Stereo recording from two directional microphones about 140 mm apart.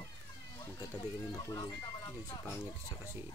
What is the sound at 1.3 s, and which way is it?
Speech, 30° left (ahead or behind).